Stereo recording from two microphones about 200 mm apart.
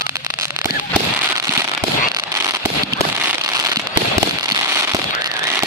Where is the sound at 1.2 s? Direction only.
15° right (ahead or behind).